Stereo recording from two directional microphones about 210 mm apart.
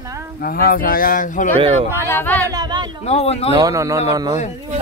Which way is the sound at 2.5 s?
20° right (ahead or behind).